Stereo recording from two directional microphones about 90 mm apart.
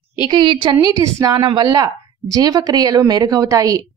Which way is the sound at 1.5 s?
55° right (ahead or behind).